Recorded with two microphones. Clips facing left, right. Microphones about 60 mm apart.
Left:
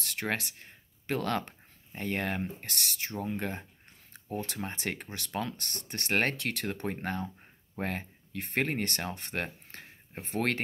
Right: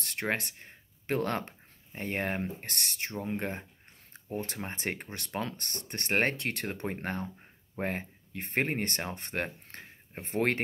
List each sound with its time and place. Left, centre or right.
0.0 s speech: right